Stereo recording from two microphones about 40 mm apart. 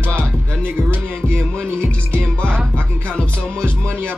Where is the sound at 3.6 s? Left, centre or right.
Left.